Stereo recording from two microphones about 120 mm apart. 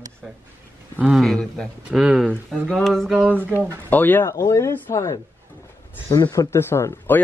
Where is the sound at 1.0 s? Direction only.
5° right (ahead or behind).